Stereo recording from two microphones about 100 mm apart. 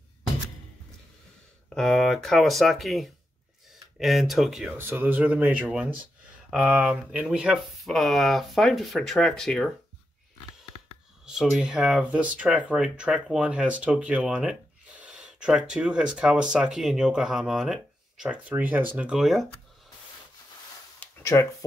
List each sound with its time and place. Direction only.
1.8 s speech: 5° left (ahead or behind)
4.7 s speech: 20° right (ahead or behind); by 9.7 s 5° left (ahead or behind)
11.3 s speech: 5° right (ahead or behind)
18.5 s speech: 20° right (ahead or behind)
19.1 s speech: centre (ahead or behind)
21.2 s speech: 30° left (ahead or behind)